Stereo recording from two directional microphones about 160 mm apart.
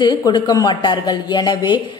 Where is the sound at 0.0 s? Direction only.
25° left (ahead or behind).